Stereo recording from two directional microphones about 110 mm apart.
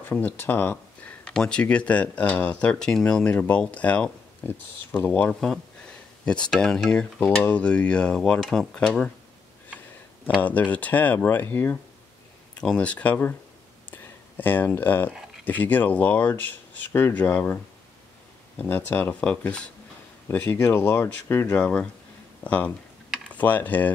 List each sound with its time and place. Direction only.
0.1 s speech: 15° left (ahead or behind)
10.4 s speech: 15° left (ahead or behind)
13.8 s a sound: 15° left (ahead or behind)
15.4 s speech: 15° left (ahead or behind)
18.6 s speech: 15° left (ahead or behind)
20.2 s speech: 25° left (ahead or behind)
21.5 s speech: 10° left (ahead or behind)